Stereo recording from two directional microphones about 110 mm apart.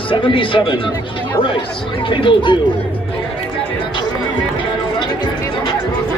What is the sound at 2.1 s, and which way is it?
Speech, 50° left (ahead or behind).